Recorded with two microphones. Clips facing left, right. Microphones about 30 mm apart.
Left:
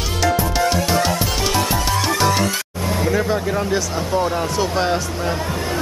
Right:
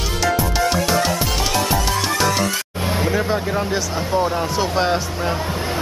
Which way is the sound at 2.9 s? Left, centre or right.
Right.